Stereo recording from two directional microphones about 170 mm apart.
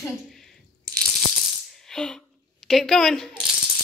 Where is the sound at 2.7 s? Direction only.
Centre (ahead or behind).